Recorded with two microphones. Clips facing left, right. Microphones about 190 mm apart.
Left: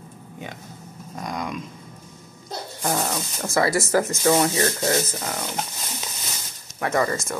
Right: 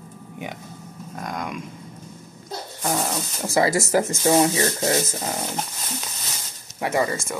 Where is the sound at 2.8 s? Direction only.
Centre (ahead or behind).